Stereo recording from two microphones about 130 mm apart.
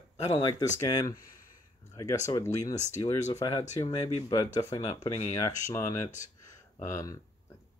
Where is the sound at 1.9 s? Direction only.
25° left (ahead or behind).